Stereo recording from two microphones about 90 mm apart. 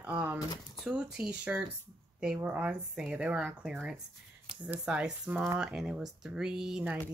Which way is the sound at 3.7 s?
10° right (ahead or behind).